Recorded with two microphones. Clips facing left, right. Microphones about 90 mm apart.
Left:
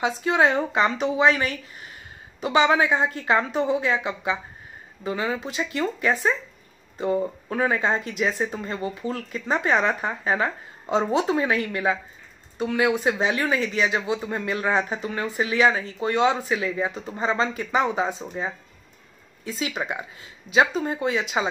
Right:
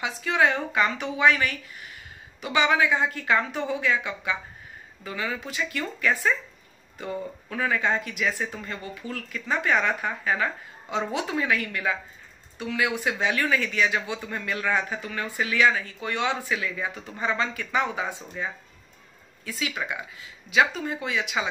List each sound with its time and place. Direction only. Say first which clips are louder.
0.0 s speech: left 3 dB; 30° left (ahead or behind)